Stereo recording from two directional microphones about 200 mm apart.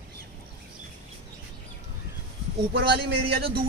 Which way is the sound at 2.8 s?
50° right (ahead or behind).